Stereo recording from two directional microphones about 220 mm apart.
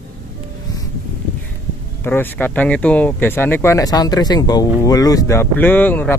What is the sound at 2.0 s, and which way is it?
Speech, 10° left (ahead or behind).